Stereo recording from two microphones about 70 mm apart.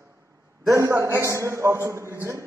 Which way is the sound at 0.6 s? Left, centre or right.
Right.